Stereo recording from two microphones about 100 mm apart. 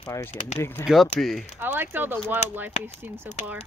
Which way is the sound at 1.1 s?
5° left (ahead or behind).